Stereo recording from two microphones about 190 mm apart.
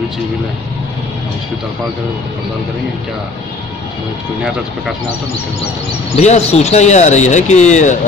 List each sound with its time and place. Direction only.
6.1 s speech: 35° left (ahead or behind)